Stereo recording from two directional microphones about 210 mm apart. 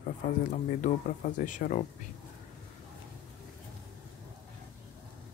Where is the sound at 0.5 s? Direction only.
35° left (ahead or behind).